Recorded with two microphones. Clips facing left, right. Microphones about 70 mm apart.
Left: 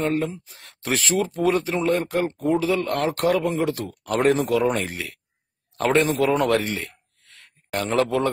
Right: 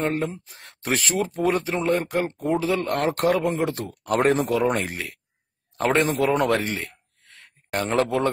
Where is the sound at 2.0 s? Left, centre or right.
Right.